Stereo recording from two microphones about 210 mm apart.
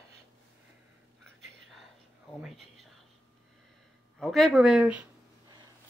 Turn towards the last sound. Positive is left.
turn(degrees=-5)  # may be behind; listen again after turning